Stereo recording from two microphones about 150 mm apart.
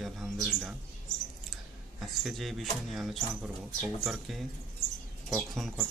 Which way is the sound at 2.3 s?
Centre (ahead or behind).